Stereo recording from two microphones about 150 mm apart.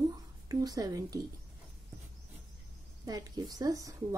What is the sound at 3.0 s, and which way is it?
Speech, 25° right (ahead or behind).